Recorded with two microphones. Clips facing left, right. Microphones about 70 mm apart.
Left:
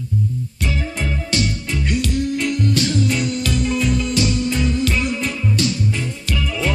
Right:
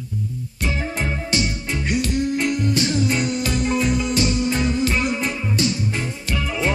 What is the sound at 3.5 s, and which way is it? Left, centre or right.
Music, right.